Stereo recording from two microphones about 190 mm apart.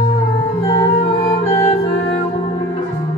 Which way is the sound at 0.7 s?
25° left (ahead or behind).